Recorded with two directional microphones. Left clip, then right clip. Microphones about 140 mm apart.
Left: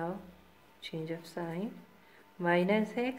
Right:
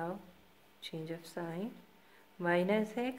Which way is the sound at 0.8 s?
20° right (ahead or behind).